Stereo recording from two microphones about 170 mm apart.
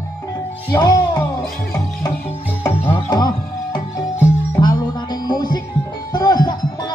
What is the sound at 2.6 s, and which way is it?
Music, 15° left (ahead or behind).